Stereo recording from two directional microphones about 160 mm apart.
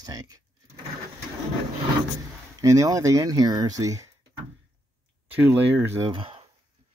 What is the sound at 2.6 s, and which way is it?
Speech, 20° right (ahead or behind).